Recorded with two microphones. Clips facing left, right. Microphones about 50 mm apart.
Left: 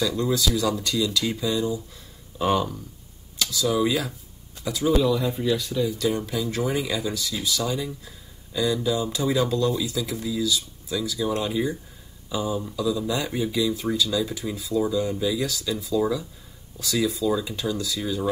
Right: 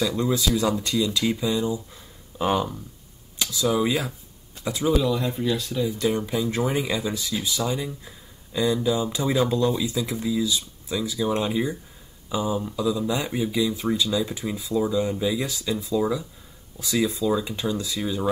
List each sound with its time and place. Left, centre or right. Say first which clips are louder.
0.0 s speech: even; right
4.9 s speech: left 1 dB; centre
5.9 s speech: right 1 dB; right